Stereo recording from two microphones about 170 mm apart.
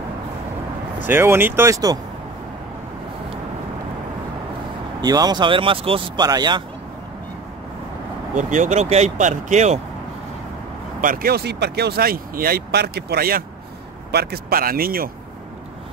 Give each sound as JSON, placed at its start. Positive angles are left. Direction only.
{"t": 1.0, "sound": "speech", "side_deg": -15}
{"t": 5.0, "sound": "speech", "side_deg": -20}
{"t": 8.4, "sound": "speech", "side_deg": -45}
{"t": 11.0, "sound": "speech", "side_deg": -55}